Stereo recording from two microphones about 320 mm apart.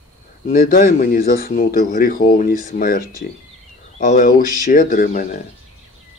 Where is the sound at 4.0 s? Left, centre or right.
Left.